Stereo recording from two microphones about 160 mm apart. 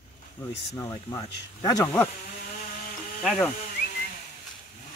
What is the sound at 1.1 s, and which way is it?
Speech, 20° left (ahead or behind).